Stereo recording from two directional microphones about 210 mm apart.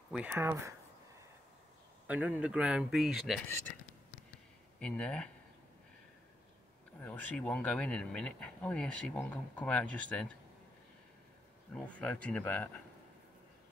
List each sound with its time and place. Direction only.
0.1 s speech: 10° right (ahead or behind)
2.0 s speech: 5° right (ahead or behind)
3.4 s speech: 10° left (ahead or behind)
4.7 s speech: 5° left (ahead or behind)
7.0 s speech: 10° left (ahead or behind)
11.7 s speech: 5° left (ahead or behind)